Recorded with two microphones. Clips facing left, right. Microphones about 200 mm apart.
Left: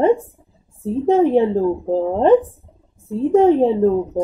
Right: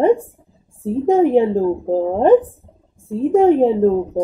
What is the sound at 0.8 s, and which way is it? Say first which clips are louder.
Female singing: right 1 dB; 15° right (ahead or behind).